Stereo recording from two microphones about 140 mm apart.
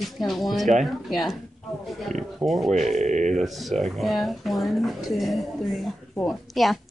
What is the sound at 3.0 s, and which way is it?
Speech, 60° right (ahead or behind).